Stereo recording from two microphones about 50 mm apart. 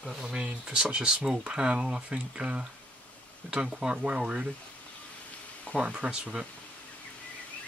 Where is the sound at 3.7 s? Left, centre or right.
Centre.